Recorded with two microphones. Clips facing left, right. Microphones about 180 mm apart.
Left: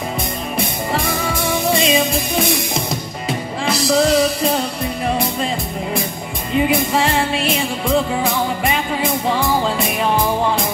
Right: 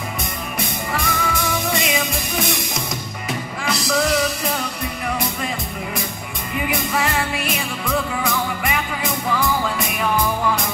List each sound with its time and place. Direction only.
0.9 s music: 30° left (ahead or behind)
3.6 s music: 30° left (ahead or behind)
6.5 s music: 25° left (ahead or behind)